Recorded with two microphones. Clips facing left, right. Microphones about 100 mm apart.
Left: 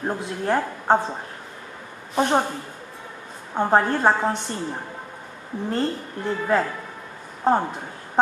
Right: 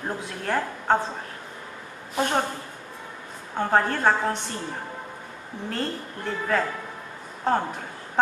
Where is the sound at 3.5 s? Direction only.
20° left (ahead or behind).